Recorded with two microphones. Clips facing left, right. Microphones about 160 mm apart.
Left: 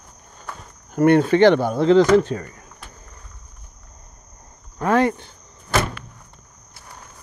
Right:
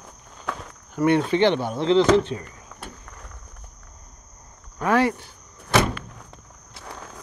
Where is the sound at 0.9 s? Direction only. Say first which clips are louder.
Left 5 dB; 50° left (ahead or behind).